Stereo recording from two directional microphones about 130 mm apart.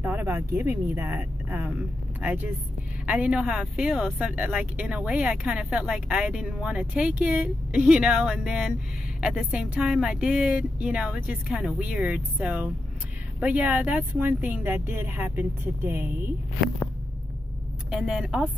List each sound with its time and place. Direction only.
0.0 s speech: 15° right (ahead or behind)
17.9 s a woman's voice: 5° right (ahead or behind)